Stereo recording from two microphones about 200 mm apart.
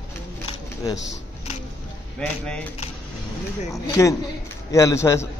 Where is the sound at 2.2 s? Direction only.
5° left (ahead or behind).